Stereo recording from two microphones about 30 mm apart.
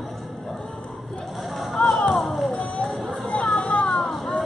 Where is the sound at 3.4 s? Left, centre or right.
Left.